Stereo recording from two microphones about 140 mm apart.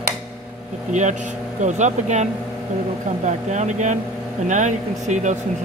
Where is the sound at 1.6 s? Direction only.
60° right (ahead or behind).